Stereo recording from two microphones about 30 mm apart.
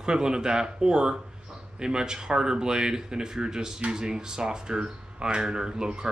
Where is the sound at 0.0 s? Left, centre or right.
Right.